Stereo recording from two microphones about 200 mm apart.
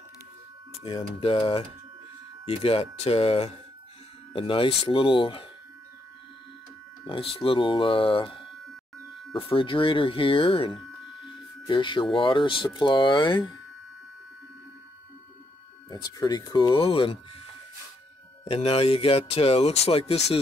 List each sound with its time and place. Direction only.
0.8 s speech: 25° left (ahead or behind)
7.1 s speech: 25° left (ahead or behind)
15.9 s speech: 20° left (ahead or behind)
18.4 s speech: 30° left (ahead or behind)